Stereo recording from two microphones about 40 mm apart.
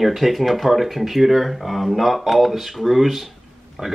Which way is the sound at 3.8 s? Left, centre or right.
Centre.